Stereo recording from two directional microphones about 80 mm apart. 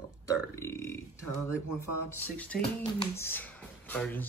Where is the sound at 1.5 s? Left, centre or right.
Left.